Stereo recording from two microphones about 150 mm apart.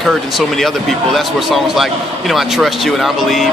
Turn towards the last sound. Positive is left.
turn(degrees=0)  # may be behind; listen again after turning